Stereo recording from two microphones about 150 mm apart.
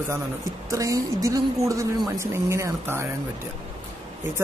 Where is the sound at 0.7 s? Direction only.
20° right (ahead or behind).